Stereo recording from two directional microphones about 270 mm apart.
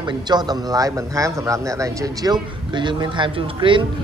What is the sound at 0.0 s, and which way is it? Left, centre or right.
Speech, centre.